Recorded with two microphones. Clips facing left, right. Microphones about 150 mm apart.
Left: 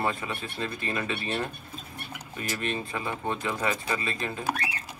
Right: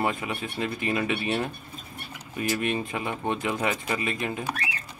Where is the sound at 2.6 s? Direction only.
15° right (ahead or behind).